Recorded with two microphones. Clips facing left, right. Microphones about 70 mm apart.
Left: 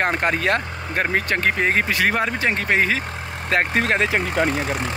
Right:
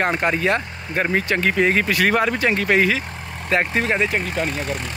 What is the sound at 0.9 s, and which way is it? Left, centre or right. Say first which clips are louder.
Speech: right 1 dB; left.